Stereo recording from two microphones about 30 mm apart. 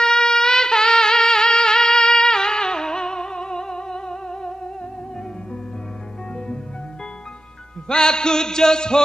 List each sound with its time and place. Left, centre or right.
0.0 s wind instrument: left
7.9 s music: left